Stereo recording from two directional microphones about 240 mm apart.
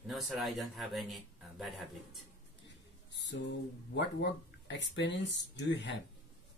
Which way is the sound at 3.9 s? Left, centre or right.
Left.